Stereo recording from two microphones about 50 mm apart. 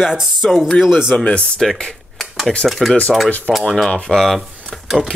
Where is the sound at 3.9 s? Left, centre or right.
Centre.